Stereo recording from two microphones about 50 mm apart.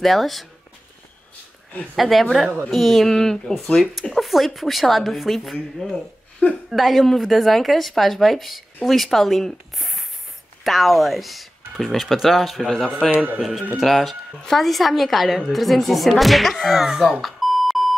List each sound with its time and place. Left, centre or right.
0.0 s speech: centre
2.0 s speech: centre
3.1 s speech: centre
4.1 s speech: centre
13.1 s speech: right
13.4 s speech: centre
17.0 s beep: centre